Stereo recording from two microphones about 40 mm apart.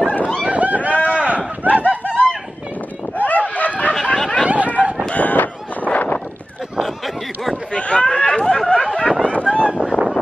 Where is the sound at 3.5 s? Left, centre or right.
Left.